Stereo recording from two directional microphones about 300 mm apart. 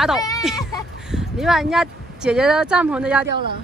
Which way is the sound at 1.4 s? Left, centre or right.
Centre.